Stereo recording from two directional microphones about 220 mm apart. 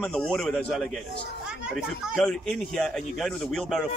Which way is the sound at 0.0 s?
5° left (ahead or behind).